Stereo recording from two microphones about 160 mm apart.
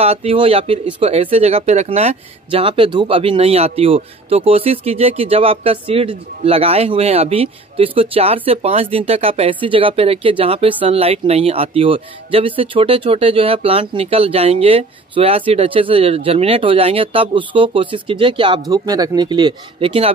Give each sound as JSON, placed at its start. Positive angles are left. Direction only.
{"t": 0.0, "sound": "speech", "side_deg": -40}